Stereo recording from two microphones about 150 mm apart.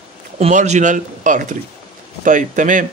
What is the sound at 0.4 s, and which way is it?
Speech, 50° right (ahead or behind).